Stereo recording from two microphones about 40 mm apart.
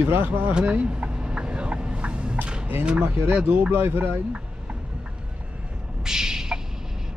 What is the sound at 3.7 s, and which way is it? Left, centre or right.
Speech, right.